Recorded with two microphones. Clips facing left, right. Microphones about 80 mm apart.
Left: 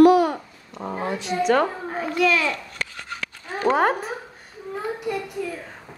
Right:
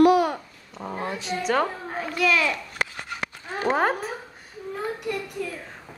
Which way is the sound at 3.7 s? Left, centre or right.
Centre.